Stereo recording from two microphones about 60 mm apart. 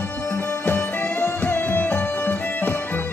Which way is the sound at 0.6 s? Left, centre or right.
Left.